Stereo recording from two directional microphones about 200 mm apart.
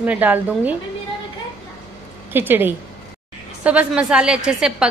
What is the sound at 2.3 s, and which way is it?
A woman's voice, 10° right (ahead or behind).